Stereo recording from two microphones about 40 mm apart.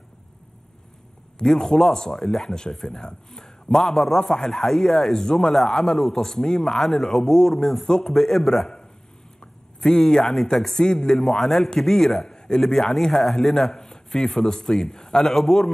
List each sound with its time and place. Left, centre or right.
1.4 s speech: centre